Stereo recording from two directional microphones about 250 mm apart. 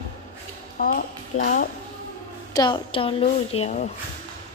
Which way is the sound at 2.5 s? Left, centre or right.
Centre.